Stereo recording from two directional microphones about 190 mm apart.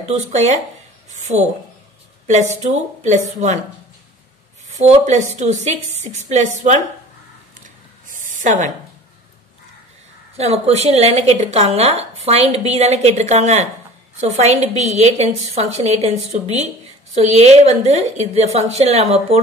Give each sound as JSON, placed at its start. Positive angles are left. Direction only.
{"t": 0.1, "sound": "a woman's voice", "side_deg": -35}
{"t": 2.6, "sound": "a woman's voice", "side_deg": -35}
{"t": 4.7, "sound": "a woman's voice", "side_deg": -40}
{"t": 8.1, "sound": "a sound", "side_deg": -45}
{"t": 10.3, "sound": "a woman's voice", "side_deg": -35}